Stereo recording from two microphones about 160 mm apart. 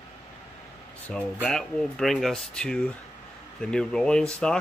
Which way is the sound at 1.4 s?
Centre (ahead or behind).